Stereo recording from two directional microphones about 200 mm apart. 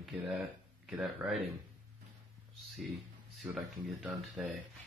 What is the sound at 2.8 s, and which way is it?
Speech, centre (ahead or behind).